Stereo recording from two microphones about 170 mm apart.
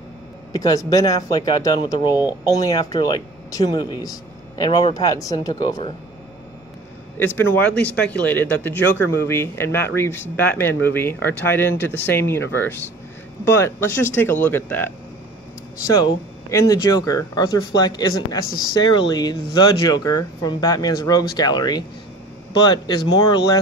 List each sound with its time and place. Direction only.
0.5 s speech: 20° left (ahead or behind)
2.1 s speech: 10° right (ahead or behind)
2.5 s speech: 20° left (ahead or behind)
7.2 s speech: 10° left (ahead or behind)
16.0 s speech: 20° left (ahead or behind)